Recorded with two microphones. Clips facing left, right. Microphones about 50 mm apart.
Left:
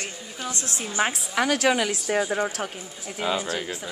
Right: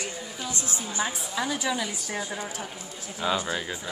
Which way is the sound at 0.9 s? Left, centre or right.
Left.